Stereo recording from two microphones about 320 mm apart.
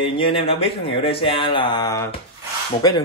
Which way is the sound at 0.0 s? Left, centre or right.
Centre.